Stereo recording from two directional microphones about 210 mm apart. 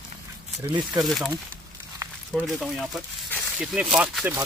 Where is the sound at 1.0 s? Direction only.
Centre (ahead or behind).